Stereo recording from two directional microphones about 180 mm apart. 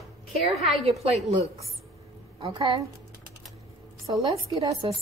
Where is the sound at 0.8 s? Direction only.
35° right (ahead or behind).